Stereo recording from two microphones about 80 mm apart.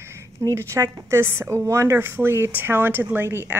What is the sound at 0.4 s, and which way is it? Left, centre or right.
A woman's voice, right.